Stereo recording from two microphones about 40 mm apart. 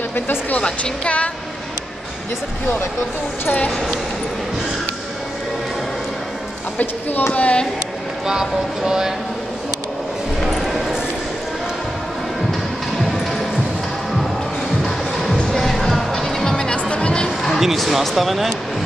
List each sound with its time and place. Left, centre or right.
0.6 s speech: left
1.0 s speech: left
6.8 s speech: left
7.3 s speech: left
8.3 s speech: centre
10.4 s a sound: centre
15.5 s music: centre; by 17.3 s left
17.6 s speech: centre